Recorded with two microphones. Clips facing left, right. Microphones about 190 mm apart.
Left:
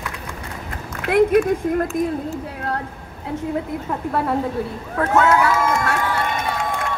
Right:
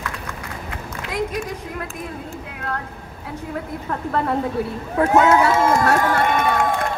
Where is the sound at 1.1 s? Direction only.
60° left (ahead or behind).